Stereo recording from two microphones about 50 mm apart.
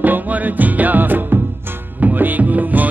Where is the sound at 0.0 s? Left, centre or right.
Right.